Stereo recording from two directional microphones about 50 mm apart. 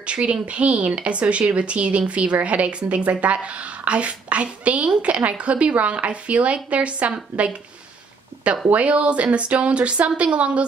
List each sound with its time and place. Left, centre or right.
0.0 s speech: right
8.6 s speech: right